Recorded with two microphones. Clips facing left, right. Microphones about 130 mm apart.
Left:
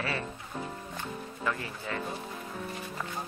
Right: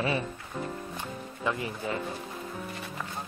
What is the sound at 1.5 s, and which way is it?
Speech, 20° right (ahead or behind).